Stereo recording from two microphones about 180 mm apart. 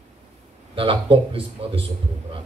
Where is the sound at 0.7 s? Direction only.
30° right (ahead or behind).